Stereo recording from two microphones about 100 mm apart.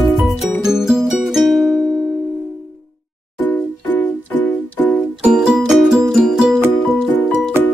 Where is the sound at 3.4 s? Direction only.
15° left (ahead or behind).